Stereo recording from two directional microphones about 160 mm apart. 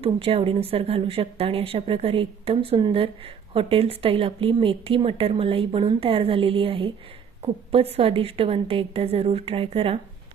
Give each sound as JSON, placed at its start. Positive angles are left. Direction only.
{"t": 0.0, "sound": "speech", "side_deg": -35}